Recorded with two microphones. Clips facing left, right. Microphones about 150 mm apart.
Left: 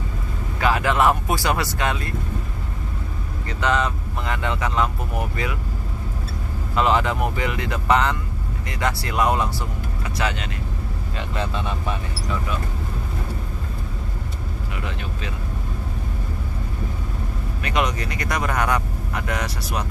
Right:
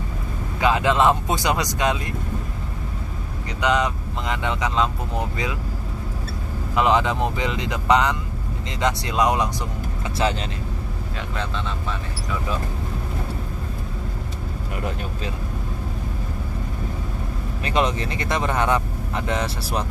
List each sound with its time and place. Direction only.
0.6 s speech: 20° right (ahead or behind)
3.4 s speech: 15° right (ahead or behind)
6.7 s speech: 15° right (ahead or behind)
10.1 s speech: 30° right (ahead or behind)
11.1 s speech: 5° left (ahead or behind)
17.6 s speech: 30° right (ahead or behind)